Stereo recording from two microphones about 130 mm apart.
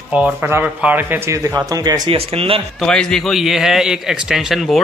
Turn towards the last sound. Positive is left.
turn(degrees=0)  # may be behind; listen again after turning